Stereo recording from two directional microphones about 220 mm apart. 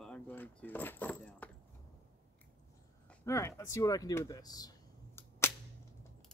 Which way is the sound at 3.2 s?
15° left (ahead or behind).